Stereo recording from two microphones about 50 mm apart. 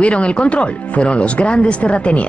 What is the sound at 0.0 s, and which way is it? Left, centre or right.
Speech, left.